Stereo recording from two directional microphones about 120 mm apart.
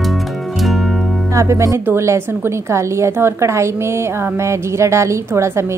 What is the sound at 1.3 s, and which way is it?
A woman's voice, 25° right (ahead or behind).